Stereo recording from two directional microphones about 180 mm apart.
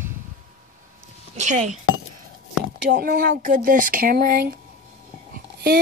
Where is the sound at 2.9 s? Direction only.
60° right (ahead or behind).